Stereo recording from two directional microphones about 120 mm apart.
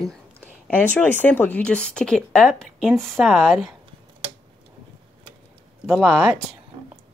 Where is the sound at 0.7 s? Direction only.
15° left (ahead or behind).